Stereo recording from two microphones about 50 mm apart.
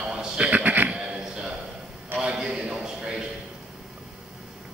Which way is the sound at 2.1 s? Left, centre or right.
Right.